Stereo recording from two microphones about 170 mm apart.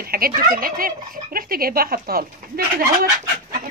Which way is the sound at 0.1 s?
60° right (ahead or behind).